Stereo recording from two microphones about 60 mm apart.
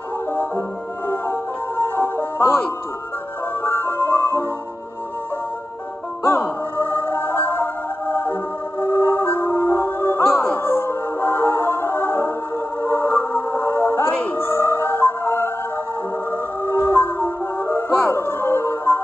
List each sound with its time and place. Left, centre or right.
1.0 s music: left
3.6 s music: left
6.2 s music: left
8.7 s music: left
9.0 s music: left
14.1 s music: left
14.4 s music: left
16.7 s music: left